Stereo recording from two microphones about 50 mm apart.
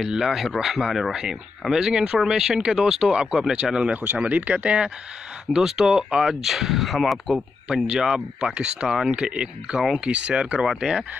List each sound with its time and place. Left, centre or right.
0.0 s speech: centre
3.9 s speech: right
5.5 s speech: centre
7.6 s speech: centre
10.0 s speech: right